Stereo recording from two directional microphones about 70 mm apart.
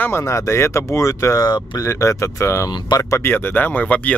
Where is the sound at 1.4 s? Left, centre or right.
Left.